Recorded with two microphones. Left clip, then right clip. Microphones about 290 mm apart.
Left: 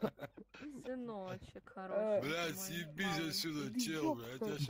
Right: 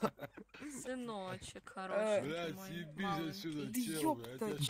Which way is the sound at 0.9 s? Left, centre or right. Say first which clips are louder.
Right 2 dB; right.